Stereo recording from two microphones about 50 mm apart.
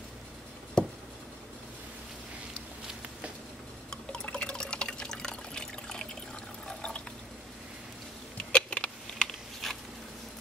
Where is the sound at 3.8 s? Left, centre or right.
Centre.